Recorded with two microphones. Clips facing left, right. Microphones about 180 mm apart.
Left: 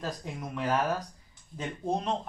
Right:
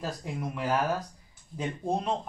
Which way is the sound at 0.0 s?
5° right (ahead or behind).